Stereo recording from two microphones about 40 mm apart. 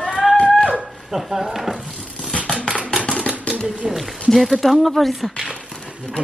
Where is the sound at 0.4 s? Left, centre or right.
Left.